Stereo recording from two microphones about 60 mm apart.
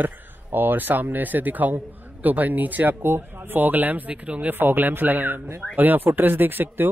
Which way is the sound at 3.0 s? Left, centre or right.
Right.